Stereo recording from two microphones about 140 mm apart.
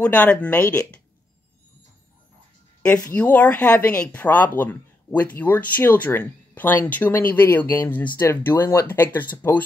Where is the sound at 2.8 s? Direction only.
10° left (ahead or behind).